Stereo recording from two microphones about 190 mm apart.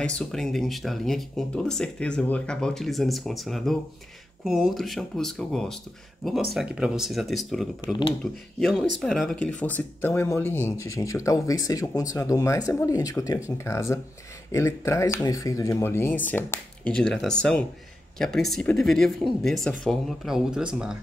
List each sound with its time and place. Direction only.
0.0 s speech: 5° left (ahead or behind)